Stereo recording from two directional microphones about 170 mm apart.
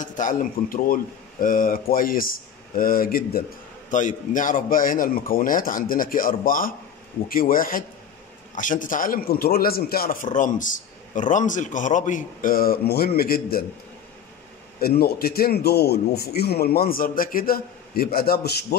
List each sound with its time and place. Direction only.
0.0 s a man's voice: 50° left (ahead or behind)
3.9 s a man's voice: 45° left (ahead or behind); by 13.7 s 60° left (ahead or behind)
14.8 s a man's voice: 65° left (ahead or behind)